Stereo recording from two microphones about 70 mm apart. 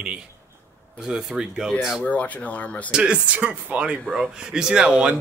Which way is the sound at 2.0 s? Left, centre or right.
Centre.